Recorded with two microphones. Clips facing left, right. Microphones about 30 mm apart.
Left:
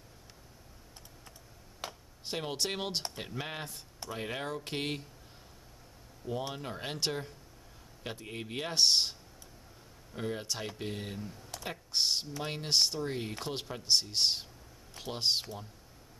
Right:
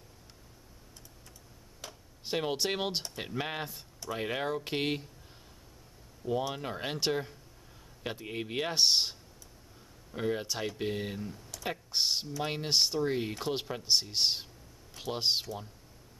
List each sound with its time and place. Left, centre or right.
1.8 s a sound: left
2.2 s a man's voice: centre
6.5 s a man's voice: centre
10.1 s a man's voice: centre